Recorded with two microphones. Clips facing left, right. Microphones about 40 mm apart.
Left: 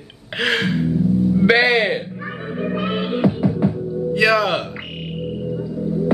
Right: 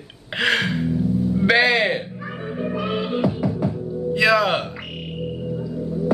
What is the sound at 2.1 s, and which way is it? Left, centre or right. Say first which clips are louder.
Music: left 2 dB; centre.